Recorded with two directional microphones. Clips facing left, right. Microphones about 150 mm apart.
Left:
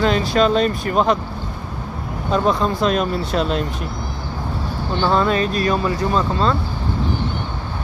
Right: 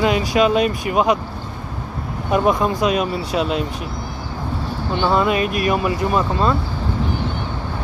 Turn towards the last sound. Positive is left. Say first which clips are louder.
# even
turn(degrees=-15)  # may be behind; listen again after turning